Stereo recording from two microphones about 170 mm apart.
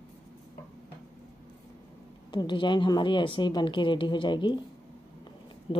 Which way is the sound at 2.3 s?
25° left (ahead or behind).